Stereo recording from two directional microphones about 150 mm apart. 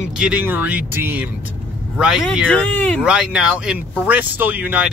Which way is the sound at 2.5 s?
5° left (ahead or behind).